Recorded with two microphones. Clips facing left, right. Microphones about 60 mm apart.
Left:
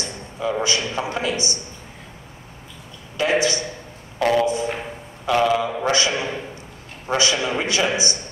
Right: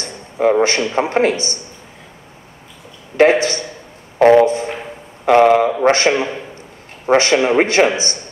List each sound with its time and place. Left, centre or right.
0.0 s a sound: right
0.9 s a man's voice: right
3.2 s a man's voice: right